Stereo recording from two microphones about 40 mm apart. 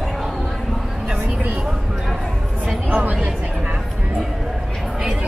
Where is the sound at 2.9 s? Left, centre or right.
Right.